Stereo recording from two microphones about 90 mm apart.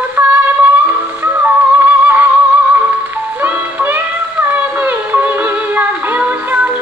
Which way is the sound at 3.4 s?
20° right (ahead or behind).